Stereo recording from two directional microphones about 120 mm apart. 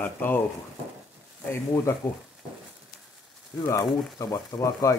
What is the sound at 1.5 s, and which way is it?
Speech, 25° left (ahead or behind).